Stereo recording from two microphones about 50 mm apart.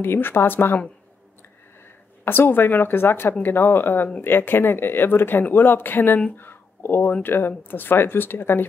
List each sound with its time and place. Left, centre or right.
0.0 s speech: left
2.2 s speech: left
6.3 s a sound: left
7.2 s speech: left